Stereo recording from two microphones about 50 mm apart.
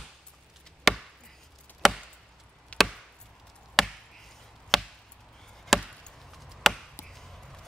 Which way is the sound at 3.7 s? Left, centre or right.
Centre.